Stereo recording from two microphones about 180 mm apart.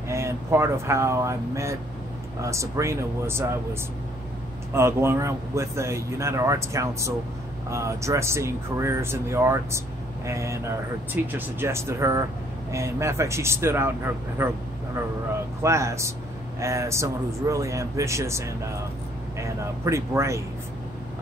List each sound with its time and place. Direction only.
0.1 s speech: 15° right (ahead or behind)
4.7 s speech: 15° right (ahead or behind)
15.6 s speech: 15° right (ahead or behind)